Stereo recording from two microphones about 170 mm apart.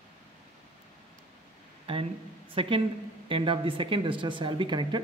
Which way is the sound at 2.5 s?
30° right (ahead or behind).